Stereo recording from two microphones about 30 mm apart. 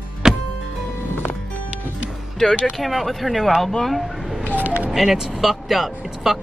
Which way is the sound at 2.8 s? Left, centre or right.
Centre.